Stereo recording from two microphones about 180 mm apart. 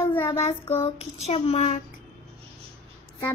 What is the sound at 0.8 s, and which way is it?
Speech, 35° left (ahead or behind).